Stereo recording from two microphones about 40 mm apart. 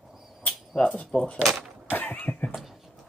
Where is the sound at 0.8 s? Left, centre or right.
Left.